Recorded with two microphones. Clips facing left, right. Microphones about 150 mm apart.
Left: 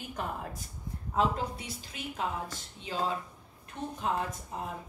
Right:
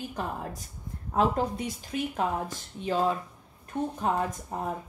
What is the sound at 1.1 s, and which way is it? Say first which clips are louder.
Speech: right 4 dB; 50° right (ahead or behind).